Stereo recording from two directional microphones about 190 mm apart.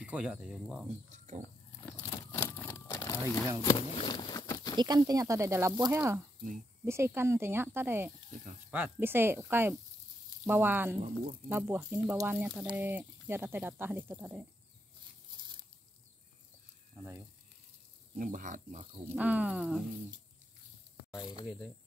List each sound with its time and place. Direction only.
0.0 s speech: 5° right (ahead or behind)
0.8 s speech: 40° right (ahead or behind)
2.0 s crumpling: 10° left (ahead or behind)
3.7 s a sound: 25° left (ahead or behind)
4.7 s speech: 20° right (ahead or behind)
16.9 s a sound: 10° right (ahead or behind)
18.1 s speech: 45° right (ahead or behind)
19.0 s speech: 10° right (ahead or behind)
21.1 s speech: 25° left (ahead or behind)